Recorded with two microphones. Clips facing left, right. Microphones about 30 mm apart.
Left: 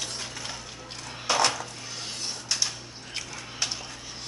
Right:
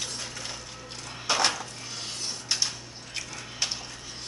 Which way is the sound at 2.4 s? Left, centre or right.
Centre.